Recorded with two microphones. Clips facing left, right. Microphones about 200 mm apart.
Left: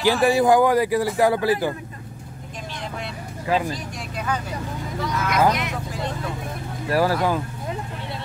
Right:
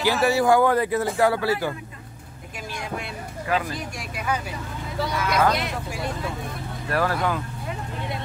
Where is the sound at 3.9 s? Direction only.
10° right (ahead or behind).